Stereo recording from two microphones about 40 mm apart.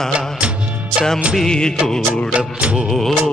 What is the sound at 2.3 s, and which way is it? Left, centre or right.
Music, right.